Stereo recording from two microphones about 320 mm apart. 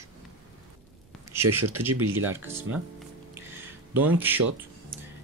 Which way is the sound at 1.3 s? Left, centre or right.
Centre.